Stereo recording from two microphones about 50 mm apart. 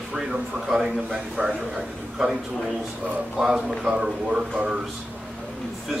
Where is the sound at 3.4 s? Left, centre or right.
Centre.